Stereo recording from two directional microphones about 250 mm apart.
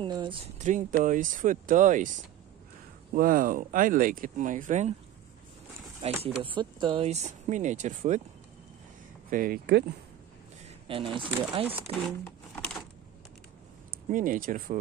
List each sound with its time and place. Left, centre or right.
0.0 s speech: centre
3.2 s speech: right
6.2 s speech: centre
9.3 s speech: right
10.9 s speech: right
11.3 s speech: centre
12.5 s typewriter: centre
14.0 s speech: right